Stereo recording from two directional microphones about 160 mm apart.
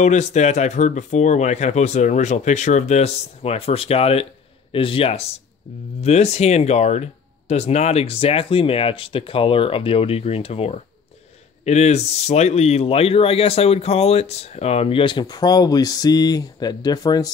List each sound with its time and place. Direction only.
0.0 s speech: 45° left (ahead or behind); by 17.3 s 25° left (ahead or behind)